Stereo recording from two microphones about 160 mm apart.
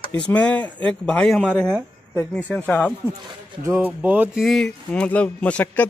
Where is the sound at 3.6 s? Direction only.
10° right (ahead or behind).